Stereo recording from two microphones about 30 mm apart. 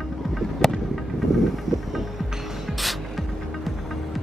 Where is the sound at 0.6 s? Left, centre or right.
Centre.